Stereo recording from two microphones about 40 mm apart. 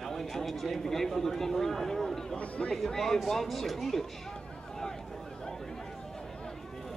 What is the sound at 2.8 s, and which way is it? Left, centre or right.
Speech, centre.